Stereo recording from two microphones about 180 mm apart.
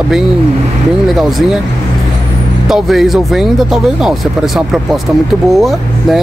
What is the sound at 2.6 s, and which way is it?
Speech, centre (ahead or behind).